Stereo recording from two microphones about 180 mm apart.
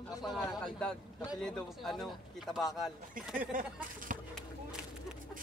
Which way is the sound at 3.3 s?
50° right (ahead or behind).